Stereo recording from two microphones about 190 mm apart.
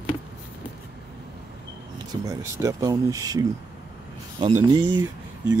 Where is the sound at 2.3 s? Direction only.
20° right (ahead or behind).